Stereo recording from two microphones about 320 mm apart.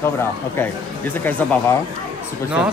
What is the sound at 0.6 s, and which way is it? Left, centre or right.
Speech, centre.